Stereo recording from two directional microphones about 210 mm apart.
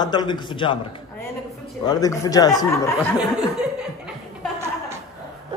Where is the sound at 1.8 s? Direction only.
15° left (ahead or behind).